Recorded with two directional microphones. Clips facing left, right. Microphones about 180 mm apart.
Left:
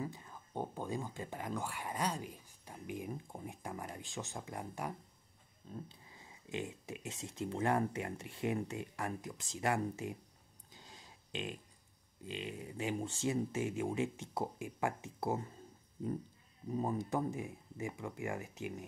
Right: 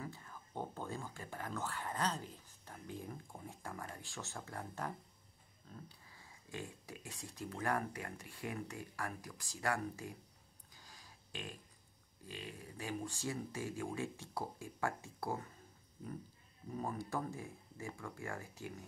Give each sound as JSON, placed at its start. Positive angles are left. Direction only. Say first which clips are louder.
{"t": 0.0, "sound": "speech", "louder": "left 5 dB", "side_deg": 20}
{"t": 10.7, "sound": "a sound", "louder": "left 4 dB", "side_deg": 25}
{"t": 12.2, "sound": "speech", "louder": "left 6 dB", "side_deg": 20}
{"t": 16.7, "sound": "speech", "louder": "left 5 dB", "side_deg": 20}